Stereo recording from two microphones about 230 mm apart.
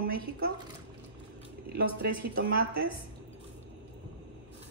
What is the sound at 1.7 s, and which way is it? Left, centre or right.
Speech, right.